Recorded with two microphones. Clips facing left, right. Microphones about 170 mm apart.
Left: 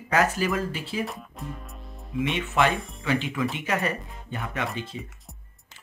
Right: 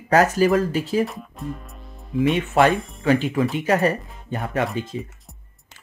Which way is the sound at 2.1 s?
40° right (ahead or behind).